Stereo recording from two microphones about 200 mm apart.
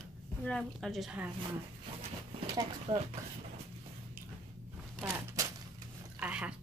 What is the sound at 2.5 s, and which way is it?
Speech, 25° right (ahead or behind).